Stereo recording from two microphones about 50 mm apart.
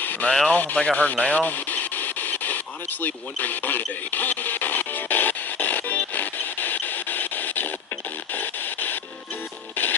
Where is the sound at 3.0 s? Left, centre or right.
Left.